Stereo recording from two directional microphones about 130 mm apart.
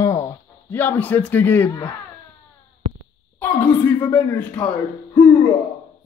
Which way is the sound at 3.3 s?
15° left (ahead or behind).